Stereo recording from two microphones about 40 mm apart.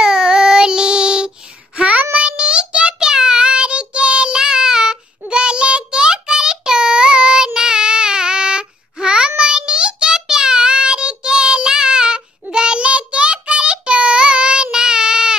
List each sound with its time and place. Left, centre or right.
0.0 s child singing: centre
1.8 s child singing: right; by 15.3 s centre